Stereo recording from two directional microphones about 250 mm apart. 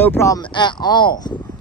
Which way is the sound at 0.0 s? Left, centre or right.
Centre.